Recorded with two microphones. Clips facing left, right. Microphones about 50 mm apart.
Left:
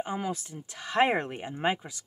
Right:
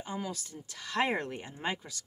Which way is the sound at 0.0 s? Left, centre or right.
Left.